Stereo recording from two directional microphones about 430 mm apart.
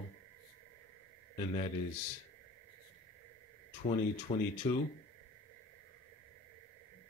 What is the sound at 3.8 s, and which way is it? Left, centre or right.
Speech, centre.